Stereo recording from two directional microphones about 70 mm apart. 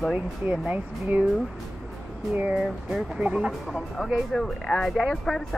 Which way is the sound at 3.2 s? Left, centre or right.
Centre.